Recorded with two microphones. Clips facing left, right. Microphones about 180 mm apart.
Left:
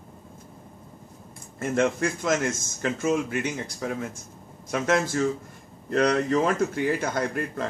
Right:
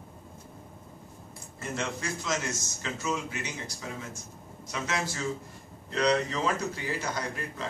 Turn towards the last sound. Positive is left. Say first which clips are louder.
# left 8 dB
turn(degrees=55)  # may be behind; listen again after turning